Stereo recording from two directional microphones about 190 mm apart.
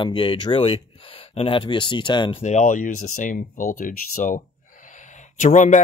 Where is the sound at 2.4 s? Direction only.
40° left (ahead or behind).